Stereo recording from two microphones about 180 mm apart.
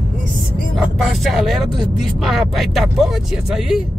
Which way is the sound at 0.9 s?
Centre (ahead or behind).